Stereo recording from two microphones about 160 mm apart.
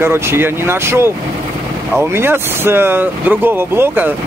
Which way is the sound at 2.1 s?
15° right (ahead or behind).